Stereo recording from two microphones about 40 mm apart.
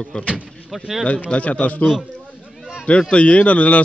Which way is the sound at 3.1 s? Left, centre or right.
Left.